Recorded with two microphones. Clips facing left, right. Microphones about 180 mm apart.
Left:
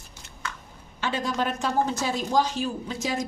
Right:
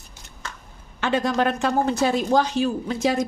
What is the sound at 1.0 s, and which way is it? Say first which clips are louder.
A woman's voice: right 6 dB; 60° right (ahead or behind).